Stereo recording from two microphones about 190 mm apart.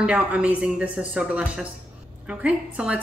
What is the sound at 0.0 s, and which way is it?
A woman's voice, 5° right (ahead or behind).